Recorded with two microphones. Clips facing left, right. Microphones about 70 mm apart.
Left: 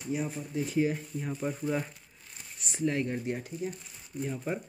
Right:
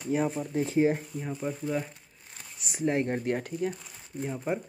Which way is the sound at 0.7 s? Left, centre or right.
Right.